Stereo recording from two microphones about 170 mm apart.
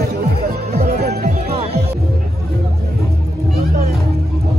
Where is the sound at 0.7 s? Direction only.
65° right (ahead or behind).